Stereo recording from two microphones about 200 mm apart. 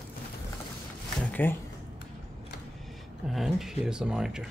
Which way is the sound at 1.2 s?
10° left (ahead or behind).